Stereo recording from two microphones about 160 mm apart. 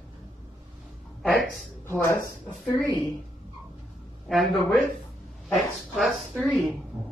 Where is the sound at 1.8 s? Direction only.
15° left (ahead or behind).